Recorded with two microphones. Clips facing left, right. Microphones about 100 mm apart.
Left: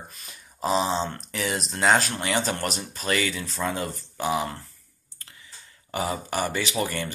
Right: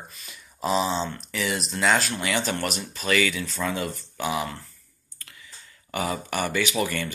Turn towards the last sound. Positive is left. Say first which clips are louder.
# right 1 dB
turn(degrees=30)  # may be behind; listen again after turning